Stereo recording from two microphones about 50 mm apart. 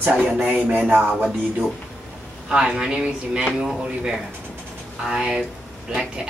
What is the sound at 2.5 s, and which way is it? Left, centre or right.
Speech, centre.